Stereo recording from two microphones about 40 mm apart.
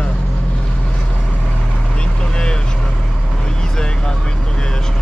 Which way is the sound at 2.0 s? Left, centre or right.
Left.